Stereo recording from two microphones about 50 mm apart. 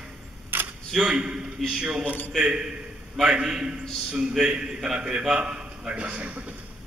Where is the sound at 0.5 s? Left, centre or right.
Right.